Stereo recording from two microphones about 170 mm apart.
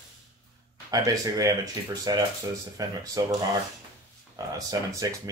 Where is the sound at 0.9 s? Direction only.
20° right (ahead or behind).